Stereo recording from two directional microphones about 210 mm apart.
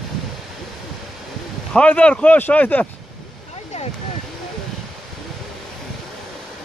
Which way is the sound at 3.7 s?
35° left (ahead or behind).